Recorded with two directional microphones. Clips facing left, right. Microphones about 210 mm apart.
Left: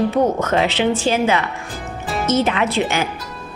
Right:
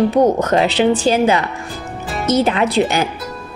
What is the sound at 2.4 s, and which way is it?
Speech, 40° right (ahead or behind).